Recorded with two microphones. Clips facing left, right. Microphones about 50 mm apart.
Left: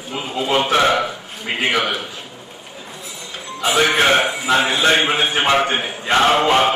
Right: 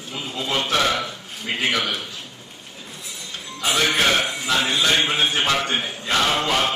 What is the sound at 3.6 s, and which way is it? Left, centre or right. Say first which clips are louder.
Speech: left 5 dB; centre.